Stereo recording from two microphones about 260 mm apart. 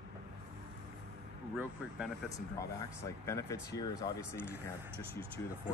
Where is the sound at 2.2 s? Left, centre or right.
Centre.